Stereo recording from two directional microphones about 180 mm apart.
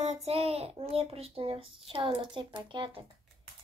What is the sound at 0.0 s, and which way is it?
A child's voice, 35° right (ahead or behind).